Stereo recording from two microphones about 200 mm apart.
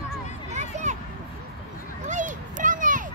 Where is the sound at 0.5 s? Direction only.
35° right (ahead or behind).